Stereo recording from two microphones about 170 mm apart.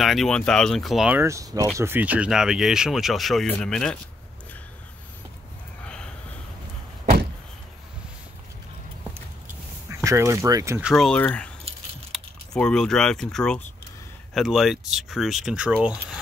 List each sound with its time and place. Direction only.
0.0 s speech: centre (ahead or behind)
1.2 s speech: 20° right (ahead or behind); by 4.0 s 5° left (ahead or behind)
9.8 s speech: 15° right (ahead or behind)
10.8 s speech: centre (ahead or behind)